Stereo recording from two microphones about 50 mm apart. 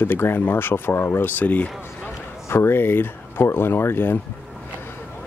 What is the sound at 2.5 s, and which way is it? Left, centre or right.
Speech, left.